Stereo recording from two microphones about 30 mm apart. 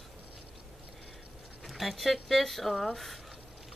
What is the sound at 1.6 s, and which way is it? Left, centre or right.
Speech, centre.